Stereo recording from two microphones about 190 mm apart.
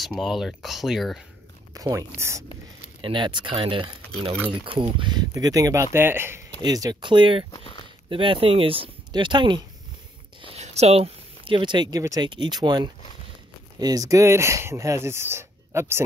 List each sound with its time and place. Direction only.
0.0 s speech: centre (ahead or behind)
1.7 s speech: 20° right (ahead or behind)
3.0 s speech: 25° right (ahead or behind)
7.5 s speech: 30° left (ahead or behind)
8.1 s speech: 25° right (ahead or behind)